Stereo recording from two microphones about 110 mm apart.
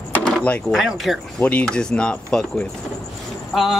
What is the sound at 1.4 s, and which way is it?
Speech, 10° left (ahead or behind).